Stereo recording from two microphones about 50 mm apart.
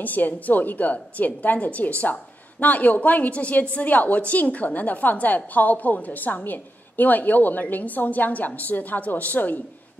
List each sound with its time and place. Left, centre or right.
0.0 s a woman's voice: left